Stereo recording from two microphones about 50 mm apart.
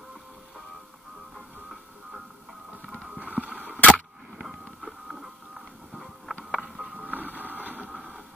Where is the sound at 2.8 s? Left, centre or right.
Centre.